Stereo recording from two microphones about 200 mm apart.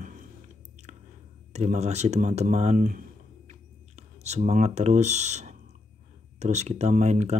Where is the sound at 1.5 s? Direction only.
35° right (ahead or behind).